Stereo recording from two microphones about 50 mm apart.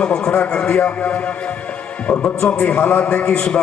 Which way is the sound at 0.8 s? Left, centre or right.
Left.